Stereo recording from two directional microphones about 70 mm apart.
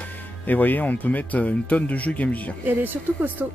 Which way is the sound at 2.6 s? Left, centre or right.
Right.